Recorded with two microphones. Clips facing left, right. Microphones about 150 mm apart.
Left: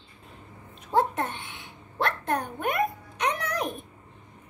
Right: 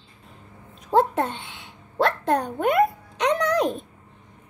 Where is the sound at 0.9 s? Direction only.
70° right (ahead or behind).